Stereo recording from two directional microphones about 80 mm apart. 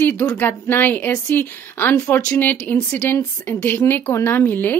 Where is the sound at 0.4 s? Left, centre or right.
Left.